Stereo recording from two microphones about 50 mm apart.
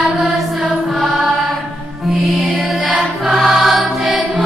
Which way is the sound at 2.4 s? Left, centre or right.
Centre.